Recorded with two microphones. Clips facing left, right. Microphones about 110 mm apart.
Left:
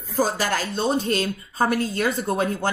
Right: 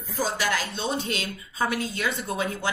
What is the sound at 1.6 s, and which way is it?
Speech, 35° left (ahead or behind).